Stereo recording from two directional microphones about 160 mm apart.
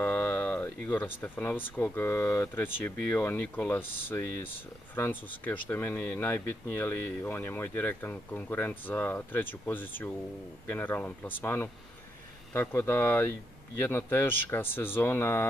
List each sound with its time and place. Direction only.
0.0 s speech: 10° left (ahead or behind)